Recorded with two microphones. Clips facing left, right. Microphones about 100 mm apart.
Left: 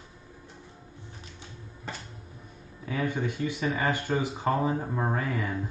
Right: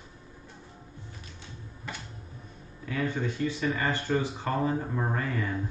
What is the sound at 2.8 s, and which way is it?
Speech, 15° left (ahead or behind).